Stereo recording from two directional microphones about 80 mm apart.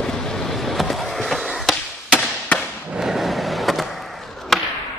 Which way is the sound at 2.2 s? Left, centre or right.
Centre.